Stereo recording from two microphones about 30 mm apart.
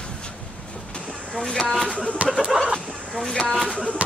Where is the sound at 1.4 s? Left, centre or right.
Left.